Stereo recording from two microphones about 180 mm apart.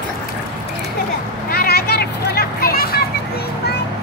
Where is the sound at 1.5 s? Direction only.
55° left (ahead or behind).